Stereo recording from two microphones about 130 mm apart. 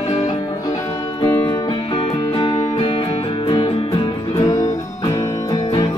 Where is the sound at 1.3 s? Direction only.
25° left (ahead or behind).